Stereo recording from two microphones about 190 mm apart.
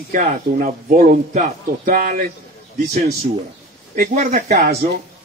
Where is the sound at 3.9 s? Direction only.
50° right (ahead or behind).